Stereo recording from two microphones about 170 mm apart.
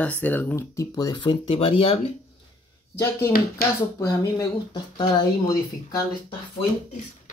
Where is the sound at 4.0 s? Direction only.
20° left (ahead or behind).